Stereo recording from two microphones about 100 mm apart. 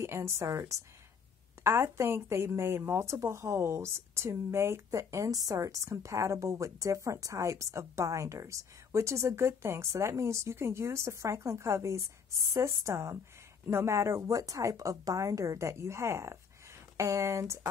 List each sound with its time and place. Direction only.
0.0 s a woman's voice: 30° right (ahead or behind)